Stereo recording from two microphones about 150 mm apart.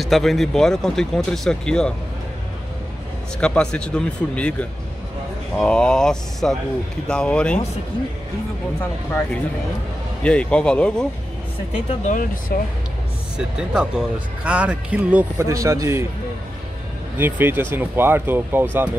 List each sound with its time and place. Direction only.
0.0 s speech: centre (ahead or behind)
3.3 s speech: 5° left (ahead or behind)
10.2 s speech: 5° left (ahead or behind)
12.0 s speech: 60° left (ahead or behind)
13.4 s speech: 5° right (ahead or behind)
15.4 s speech: 20° right (ahead or behind)
17.2 s speech: 15° right (ahead or behind)